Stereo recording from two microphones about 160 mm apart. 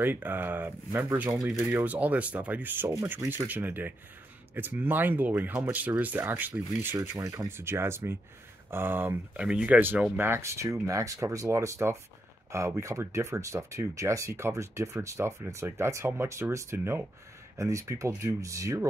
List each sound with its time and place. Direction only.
0.0 s speech: 10° right (ahead or behind)